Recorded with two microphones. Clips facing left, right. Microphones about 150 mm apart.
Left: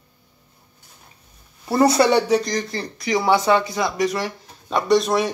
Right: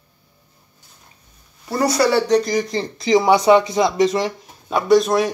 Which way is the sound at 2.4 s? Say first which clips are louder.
Right 4 dB; 10° right (ahead or behind).